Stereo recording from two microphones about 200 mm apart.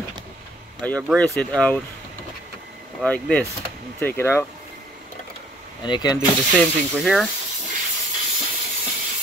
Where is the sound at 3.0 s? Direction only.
5° left (ahead or behind).